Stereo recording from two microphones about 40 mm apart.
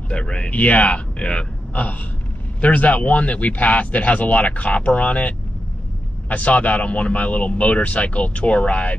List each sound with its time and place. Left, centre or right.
0.1 s a man's voice: left
0.5 s speech: left
1.7 s a sound: left
2.6 s speech: left